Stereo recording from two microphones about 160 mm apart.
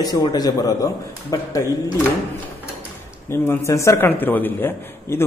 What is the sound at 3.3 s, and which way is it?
A man's voice, 15° left (ahead or behind).